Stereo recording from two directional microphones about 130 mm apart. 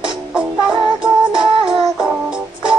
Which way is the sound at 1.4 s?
40° right (ahead or behind).